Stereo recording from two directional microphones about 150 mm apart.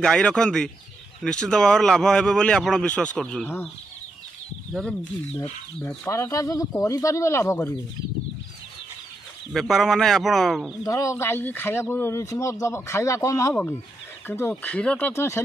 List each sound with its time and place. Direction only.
0.0 s speech: 5° left (ahead or behind)
4.7 s speech: centre (ahead or behind)
6.0 s speech: 20° left (ahead or behind)
9.5 s speech: centre (ahead or behind)
10.8 s speech: 20° left (ahead or behind)